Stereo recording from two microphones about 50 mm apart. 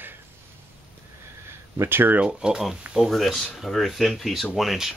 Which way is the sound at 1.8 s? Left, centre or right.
Right.